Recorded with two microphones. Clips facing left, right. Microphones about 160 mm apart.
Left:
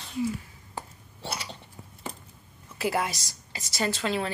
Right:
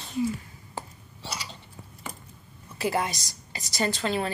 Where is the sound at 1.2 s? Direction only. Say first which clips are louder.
Left 2 dB; 55° left (ahead or behind).